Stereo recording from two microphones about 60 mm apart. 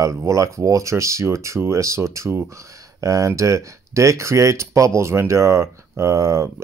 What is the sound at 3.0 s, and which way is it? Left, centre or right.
Speech, right.